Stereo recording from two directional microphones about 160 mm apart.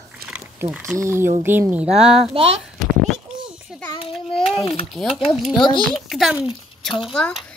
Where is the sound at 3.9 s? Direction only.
35° left (ahead or behind).